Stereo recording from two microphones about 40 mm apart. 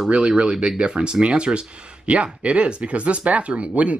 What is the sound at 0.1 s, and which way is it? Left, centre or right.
Speech, right.